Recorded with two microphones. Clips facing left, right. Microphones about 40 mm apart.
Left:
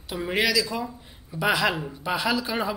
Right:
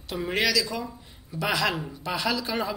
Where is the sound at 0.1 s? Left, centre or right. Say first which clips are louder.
Left 1 dB; centre.